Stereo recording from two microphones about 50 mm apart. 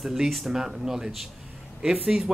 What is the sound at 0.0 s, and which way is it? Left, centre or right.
Speech, centre.